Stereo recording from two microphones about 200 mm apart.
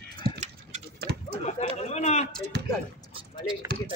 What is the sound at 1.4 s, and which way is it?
Chatter, 30° left (ahead or behind).